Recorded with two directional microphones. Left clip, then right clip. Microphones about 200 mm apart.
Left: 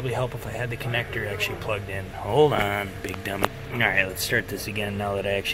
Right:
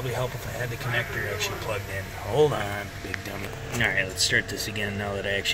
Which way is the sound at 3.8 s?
Centre (ahead or behind).